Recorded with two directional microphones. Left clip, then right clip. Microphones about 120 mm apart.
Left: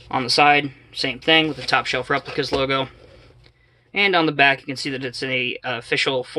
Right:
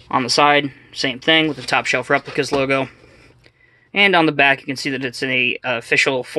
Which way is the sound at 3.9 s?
40° right (ahead or behind).